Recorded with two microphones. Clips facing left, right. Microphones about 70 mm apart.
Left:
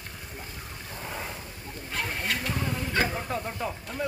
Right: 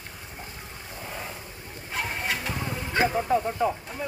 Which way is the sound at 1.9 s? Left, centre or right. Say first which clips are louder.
Right 1 dB; centre.